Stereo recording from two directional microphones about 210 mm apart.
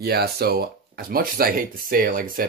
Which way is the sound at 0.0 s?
50° right (ahead or behind).